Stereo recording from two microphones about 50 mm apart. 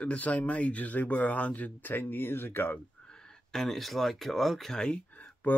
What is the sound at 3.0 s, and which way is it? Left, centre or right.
Speech, centre.